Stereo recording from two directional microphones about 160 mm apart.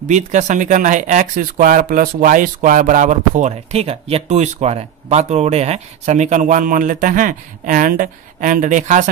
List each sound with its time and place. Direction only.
0.1 s speech: 50° right (ahead or behind)